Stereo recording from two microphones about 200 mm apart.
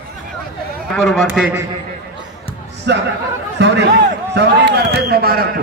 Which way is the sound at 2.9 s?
60° right (ahead or behind).